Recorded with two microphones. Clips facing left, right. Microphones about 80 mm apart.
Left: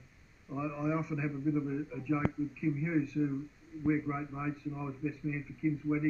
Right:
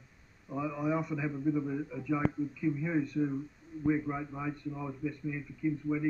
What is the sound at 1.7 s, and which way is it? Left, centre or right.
Speech, centre.